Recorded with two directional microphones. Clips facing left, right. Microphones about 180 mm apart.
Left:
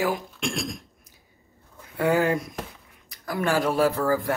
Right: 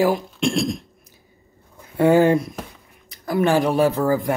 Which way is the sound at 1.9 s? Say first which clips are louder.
Right 7 dB; 30° right (ahead or behind).